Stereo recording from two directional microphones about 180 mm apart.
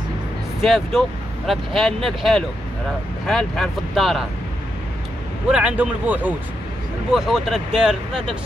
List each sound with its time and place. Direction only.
0.6 s speech: centre (ahead or behind)
5.5 s speech: 5° right (ahead or behind)